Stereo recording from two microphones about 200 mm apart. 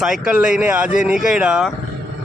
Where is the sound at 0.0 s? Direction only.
5° right (ahead or behind).